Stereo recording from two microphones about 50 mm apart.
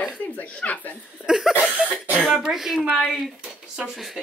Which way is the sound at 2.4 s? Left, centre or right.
Centre.